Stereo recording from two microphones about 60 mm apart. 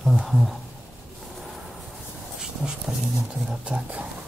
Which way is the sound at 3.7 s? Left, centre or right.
Right.